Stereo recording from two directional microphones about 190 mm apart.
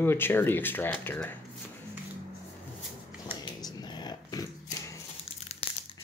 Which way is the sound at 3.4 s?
20° left (ahead or behind).